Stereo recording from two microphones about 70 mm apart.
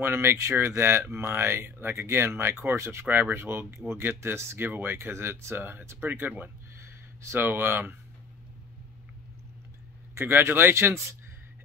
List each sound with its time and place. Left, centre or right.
0.0 s speech: right
6.8 s a sound: right
7.3 s speech: right
10.1 s speech: right